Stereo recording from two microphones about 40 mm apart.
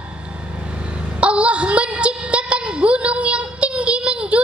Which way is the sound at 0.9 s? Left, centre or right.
Right.